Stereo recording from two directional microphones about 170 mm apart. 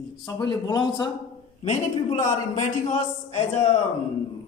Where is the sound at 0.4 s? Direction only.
25° left (ahead or behind).